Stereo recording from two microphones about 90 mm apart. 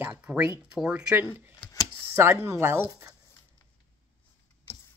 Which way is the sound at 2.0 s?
25° right (ahead or behind).